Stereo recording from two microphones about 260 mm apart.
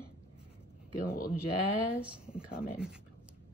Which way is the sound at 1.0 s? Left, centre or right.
Left.